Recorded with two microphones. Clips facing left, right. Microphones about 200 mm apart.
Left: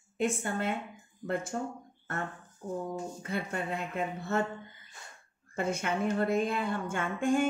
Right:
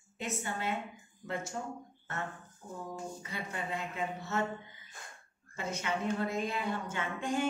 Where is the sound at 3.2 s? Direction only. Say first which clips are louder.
Left 6 dB; 55° left (ahead or behind).